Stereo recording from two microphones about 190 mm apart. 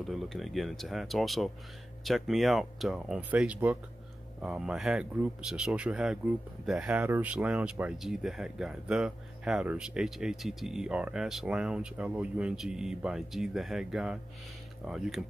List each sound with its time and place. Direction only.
0.0 s speech: centre (ahead or behind)